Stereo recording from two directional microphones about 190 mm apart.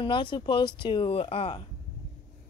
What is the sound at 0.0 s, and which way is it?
Speech, 25° left (ahead or behind).